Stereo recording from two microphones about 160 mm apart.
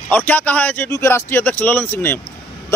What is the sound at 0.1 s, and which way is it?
Speech, 10° left (ahead or behind).